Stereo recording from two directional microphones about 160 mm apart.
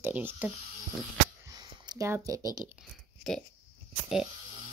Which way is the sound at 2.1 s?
20° right (ahead or behind).